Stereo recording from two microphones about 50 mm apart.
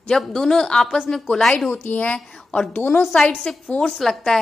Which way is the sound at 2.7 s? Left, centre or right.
Left.